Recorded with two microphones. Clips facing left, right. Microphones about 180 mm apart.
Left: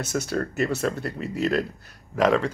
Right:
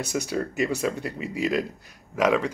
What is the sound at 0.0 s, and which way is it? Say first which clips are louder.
Speech: left 1 dB; 10° right (ahead or behind).